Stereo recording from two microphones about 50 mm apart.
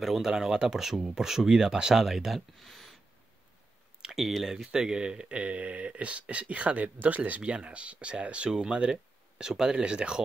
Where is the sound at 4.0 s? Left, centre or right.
Centre.